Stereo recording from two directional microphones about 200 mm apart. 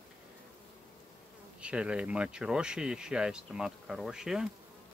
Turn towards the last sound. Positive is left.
turn(degrees=-5)  # may be behind; listen again after turning